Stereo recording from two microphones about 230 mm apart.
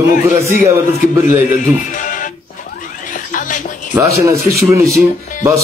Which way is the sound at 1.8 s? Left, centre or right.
Left.